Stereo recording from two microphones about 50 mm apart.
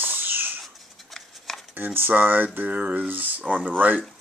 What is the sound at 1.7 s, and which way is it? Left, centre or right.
Speech, right.